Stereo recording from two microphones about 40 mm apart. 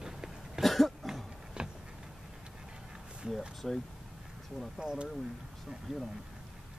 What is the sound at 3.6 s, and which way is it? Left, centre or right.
Speech, centre.